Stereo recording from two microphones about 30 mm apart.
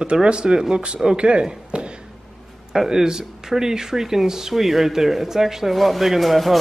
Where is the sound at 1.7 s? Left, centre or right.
Right.